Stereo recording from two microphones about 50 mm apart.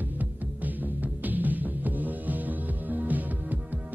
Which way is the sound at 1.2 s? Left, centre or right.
Right.